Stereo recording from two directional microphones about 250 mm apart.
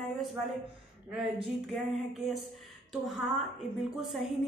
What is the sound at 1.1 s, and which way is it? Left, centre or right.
Speech, centre.